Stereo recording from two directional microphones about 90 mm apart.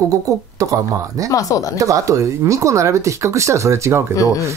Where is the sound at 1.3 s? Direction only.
40° left (ahead or behind).